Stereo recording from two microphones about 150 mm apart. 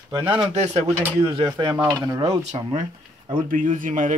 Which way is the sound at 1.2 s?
35° right (ahead or behind).